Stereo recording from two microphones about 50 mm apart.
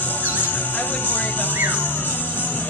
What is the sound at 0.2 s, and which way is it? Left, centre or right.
Music, left.